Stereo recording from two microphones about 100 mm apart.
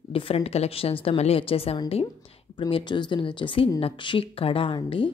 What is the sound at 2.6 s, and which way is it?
Speech, 55° left (ahead or behind).